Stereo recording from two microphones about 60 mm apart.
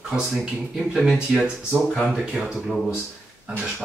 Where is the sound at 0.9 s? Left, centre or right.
Centre.